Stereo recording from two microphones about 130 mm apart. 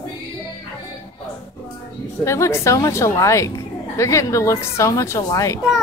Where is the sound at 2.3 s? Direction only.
20° left (ahead or behind).